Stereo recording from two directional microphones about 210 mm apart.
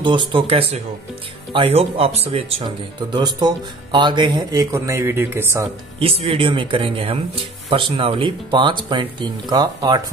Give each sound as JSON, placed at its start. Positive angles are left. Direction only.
{"t": 0.0, "sound": "speech", "side_deg": -20}
{"t": 5.9, "sound": "speech", "side_deg": -25}